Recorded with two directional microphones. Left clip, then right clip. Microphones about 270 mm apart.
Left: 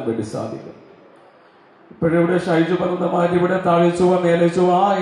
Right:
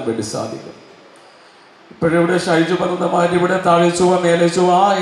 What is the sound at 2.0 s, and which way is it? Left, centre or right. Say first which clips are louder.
A man's voice: right 2 dB; centre.